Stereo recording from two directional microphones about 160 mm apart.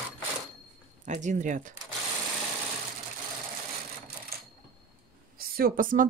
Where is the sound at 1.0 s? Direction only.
50° right (ahead or behind).